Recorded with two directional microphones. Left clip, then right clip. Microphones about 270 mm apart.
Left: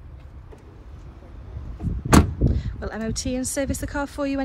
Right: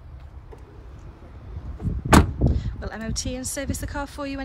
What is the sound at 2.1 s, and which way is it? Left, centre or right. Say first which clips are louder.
A woman's voice: right 1 dB; centre.